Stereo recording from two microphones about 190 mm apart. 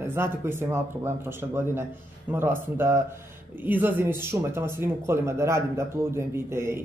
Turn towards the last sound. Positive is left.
turn(degrees=-15)  # may be behind; listen again after turning